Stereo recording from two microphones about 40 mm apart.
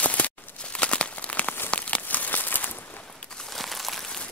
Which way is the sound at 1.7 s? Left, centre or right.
Left.